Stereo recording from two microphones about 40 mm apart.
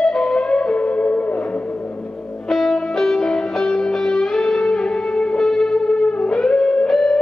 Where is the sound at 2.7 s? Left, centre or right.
Centre.